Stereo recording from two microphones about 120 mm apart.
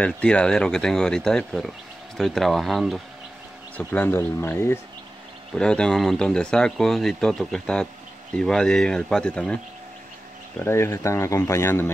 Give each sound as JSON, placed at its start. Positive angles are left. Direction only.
{"t": 0.0, "sound": "speech", "side_deg": 10}
{"t": 3.7, "sound": "speech", "side_deg": 15}
{"t": 5.5, "sound": "speech", "side_deg": 5}
{"t": 10.6, "sound": "speech", "side_deg": 20}